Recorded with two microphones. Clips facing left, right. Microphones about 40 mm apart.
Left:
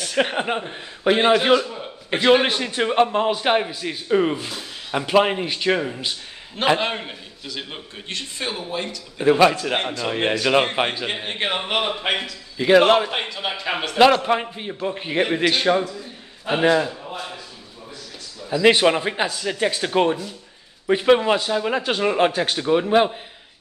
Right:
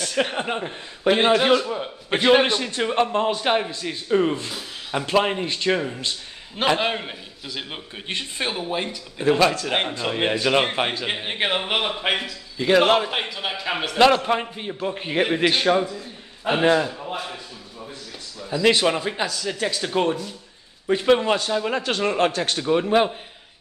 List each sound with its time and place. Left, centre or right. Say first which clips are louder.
0.0 s a man's voice: left 2 dB; centre
6.8 s a man's voice: right 1 dB; centre
8.1 s speech: right 2 dB; right
9.2 s a man's voice: left 3 dB; centre
10.0 s a man's voice: left 2 dB; centre
12.5 s a man's voice: left 3 dB; centre
18.6 s a man's voice: left 3 dB; centre